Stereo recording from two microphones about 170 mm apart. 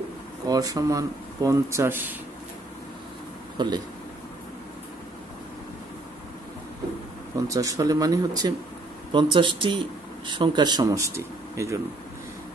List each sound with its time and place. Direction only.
0.5 s speech: 20° right (ahead or behind)
3.6 s speech: 25° right (ahead or behind)
7.4 s speech: 20° right (ahead or behind)